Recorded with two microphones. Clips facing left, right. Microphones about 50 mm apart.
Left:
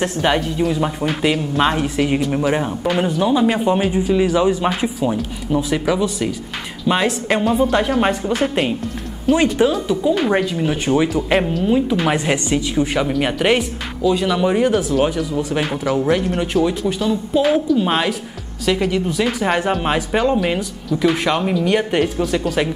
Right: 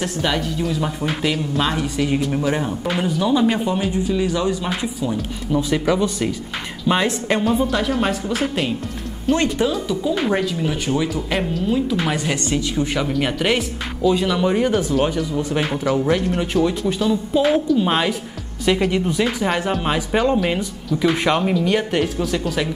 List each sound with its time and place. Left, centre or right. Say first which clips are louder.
0.0 s a woman's voice: left 4 dB; left
5.5 s a woman's voice: even; centre
8.0 s a woman's voice: left 3 dB; centre
14.0 s speech: left 1 dB; centre
18.7 s speech: even; centre
19.4 s a woman's voice: left 2 dB; centre
20.0 s speech: left 1 dB; centre